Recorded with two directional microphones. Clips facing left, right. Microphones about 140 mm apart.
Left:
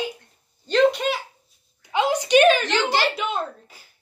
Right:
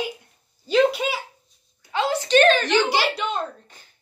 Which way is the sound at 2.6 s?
15° right (ahead or behind).